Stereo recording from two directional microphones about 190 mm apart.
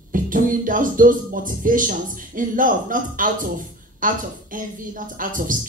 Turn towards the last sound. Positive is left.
turn(degrees=-45)  # may be behind; listen again after turning